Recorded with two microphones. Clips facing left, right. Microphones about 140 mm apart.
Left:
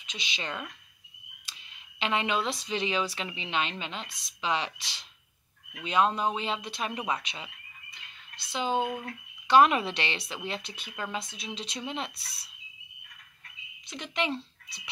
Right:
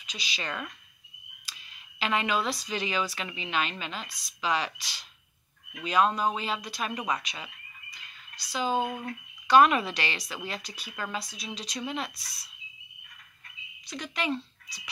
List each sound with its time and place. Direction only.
0.0 s speech: 20° left (ahead or behind)
13.8 s speech: 20° left (ahead or behind)